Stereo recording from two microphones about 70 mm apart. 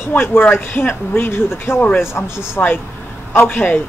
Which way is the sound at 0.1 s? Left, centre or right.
Left.